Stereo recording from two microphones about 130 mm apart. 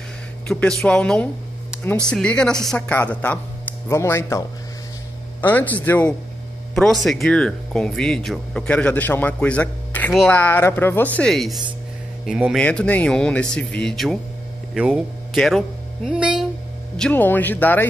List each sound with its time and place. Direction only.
0.5 s speech: 5° left (ahead or behind)
6.7 s speech: 5° left (ahead or behind)
11.1 s speech: 5° left (ahead or behind)
12.5 s speech: 10° left (ahead or behind)
16.9 s speech: 10° left (ahead or behind)